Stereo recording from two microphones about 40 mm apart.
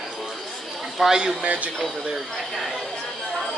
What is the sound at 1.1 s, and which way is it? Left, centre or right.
Speech, centre.